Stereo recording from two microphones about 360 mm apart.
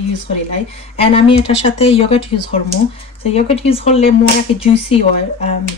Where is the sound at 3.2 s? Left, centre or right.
Centre.